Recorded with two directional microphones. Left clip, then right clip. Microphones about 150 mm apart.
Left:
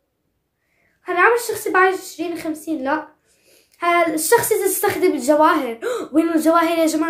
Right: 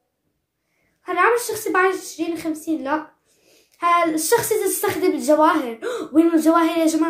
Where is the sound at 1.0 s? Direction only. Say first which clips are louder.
Left 2 dB; 25° left (ahead or behind).